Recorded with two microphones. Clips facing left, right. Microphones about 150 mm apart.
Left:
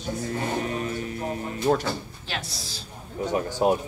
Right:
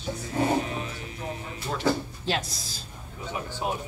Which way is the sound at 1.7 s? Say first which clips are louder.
Left 11 dB; 50° left (ahead or behind).